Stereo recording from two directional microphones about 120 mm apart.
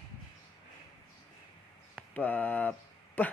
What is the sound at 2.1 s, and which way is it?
Speech, 15° left (ahead or behind).